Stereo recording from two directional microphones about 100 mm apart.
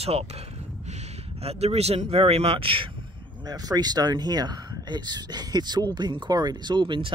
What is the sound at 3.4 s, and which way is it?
Speech, 40° right (ahead or behind).